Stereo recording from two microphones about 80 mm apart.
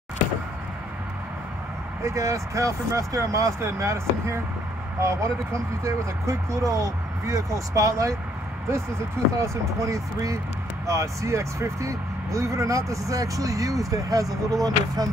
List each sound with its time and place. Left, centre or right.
2.0 s speech: right
9.4 s speech: right